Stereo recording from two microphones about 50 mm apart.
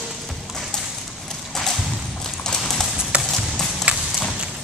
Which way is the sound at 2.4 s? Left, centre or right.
Centre.